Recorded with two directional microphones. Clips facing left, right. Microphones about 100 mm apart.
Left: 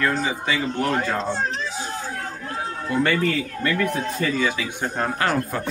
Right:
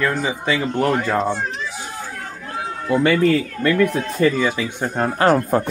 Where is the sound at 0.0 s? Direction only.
15° right (ahead or behind).